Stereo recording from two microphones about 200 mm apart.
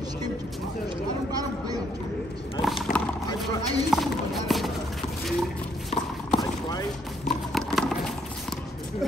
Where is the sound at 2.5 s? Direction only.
Centre (ahead or behind).